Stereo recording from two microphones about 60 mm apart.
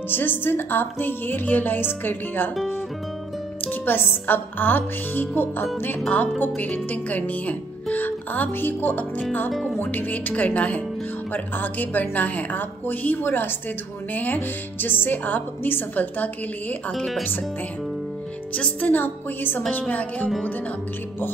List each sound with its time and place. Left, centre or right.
0.1 s music: left
3.6 s music: left
6.6 s a woman's voice: left
9.5 s music: centre
9.8 s a woman's voice: left
11.3 s music: left
14.1 s a woman's voice: left
16.9 s music: centre
18.5 s music: left
19.8 s a woman's voice: left